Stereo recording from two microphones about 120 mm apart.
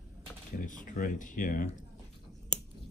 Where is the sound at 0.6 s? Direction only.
90° left.